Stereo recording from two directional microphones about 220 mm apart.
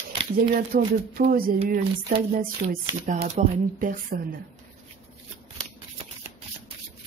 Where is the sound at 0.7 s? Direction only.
40° right (ahead or behind).